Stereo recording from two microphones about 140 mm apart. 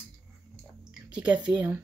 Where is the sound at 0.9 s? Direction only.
5° right (ahead or behind).